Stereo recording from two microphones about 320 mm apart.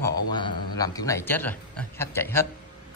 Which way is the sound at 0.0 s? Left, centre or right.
Centre.